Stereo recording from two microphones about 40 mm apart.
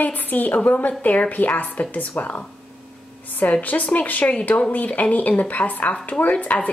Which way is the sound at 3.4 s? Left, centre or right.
Left.